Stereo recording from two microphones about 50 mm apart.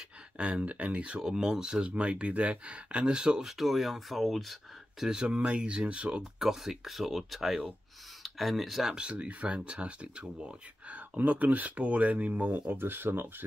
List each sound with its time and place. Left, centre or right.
0.4 s speech: right
3.4 s speech: centre
5.0 s speech: centre
6.4 s speech: centre
8.9 s speech: right
12.7 s speech: right